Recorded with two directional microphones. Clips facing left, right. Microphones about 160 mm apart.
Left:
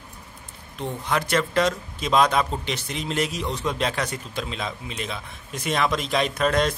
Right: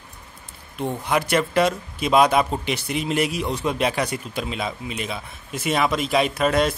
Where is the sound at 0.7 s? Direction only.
10° right (ahead or behind).